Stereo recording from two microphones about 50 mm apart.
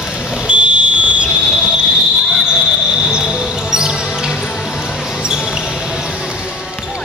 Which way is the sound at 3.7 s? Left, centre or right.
Centre.